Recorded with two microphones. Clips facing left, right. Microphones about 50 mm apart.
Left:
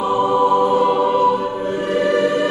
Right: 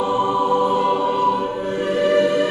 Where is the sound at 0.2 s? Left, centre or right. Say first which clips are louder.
Left 5 dB; centre.